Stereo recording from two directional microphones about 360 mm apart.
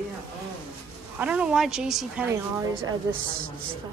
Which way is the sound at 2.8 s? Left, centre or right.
Right.